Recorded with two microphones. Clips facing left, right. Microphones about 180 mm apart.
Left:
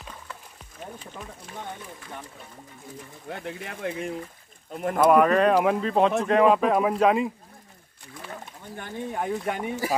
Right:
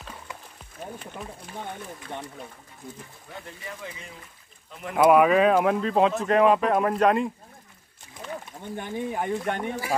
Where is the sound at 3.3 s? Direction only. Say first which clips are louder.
Left 5 dB; 70° left (ahead or behind).